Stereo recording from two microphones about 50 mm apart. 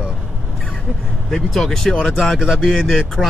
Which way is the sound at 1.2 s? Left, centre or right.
Centre.